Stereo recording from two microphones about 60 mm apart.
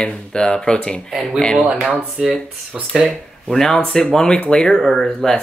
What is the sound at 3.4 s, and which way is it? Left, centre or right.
Speech, centre.